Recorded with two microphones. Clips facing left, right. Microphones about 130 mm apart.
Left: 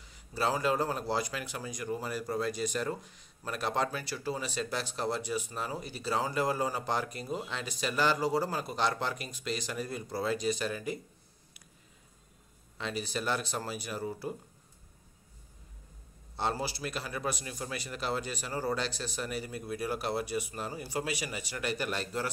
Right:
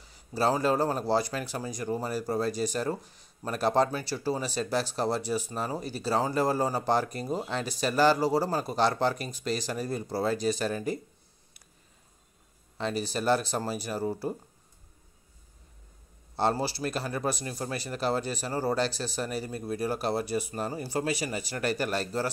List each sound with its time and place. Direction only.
0.0 s speech: 35° right (ahead or behind)
12.7 s speech: 35° right (ahead or behind)
16.3 s speech: 35° right (ahead or behind)